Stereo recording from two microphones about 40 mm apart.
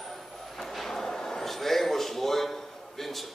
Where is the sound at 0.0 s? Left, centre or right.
Centre.